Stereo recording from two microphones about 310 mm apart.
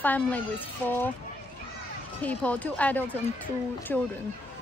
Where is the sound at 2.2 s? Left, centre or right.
Centre.